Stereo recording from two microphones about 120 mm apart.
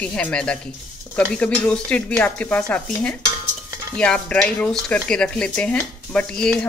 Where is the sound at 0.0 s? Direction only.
10° left (ahead or behind).